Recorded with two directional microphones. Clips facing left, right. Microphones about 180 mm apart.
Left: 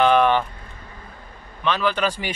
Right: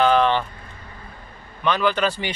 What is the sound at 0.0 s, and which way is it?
Vehicle, 15° left (ahead or behind).